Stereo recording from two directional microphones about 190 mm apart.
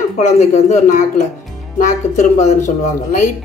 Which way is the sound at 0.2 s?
40° left (ahead or behind).